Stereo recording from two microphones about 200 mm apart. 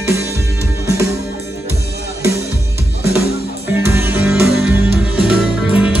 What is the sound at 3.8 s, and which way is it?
Music, 10° right (ahead or behind).